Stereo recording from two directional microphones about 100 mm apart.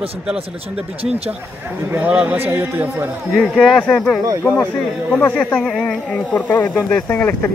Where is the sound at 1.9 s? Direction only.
15° right (ahead or behind).